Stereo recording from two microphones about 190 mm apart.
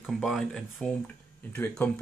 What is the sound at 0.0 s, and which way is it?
Speech, centre (ahead or behind).